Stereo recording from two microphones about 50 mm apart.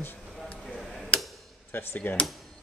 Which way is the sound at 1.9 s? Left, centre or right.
Left.